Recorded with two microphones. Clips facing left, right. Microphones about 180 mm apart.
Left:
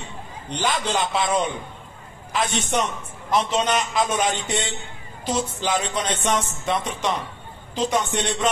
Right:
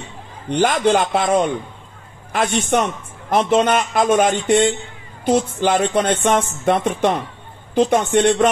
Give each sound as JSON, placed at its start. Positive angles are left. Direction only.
{"t": 0.5, "sound": "a man's voice", "side_deg": -50}
{"t": 2.7, "sound": "a man's voice", "side_deg": -55}